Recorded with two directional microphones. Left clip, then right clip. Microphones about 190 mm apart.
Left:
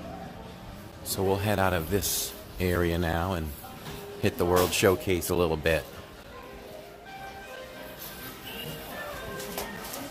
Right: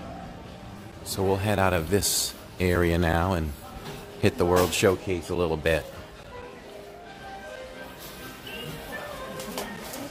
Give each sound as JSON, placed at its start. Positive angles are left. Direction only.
{"t": 1.0, "sound": "speech", "side_deg": -5}
{"t": 5.0, "sound": "speech", "side_deg": 20}
{"t": 5.4, "sound": "speech", "side_deg": 0}